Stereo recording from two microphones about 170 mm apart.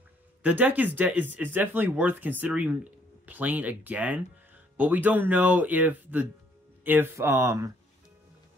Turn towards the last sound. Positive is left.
turn(degrees=-20)  # may be behind; listen again after turning